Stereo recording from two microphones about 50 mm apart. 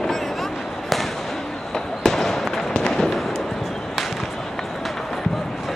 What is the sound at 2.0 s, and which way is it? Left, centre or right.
Fireworks, centre.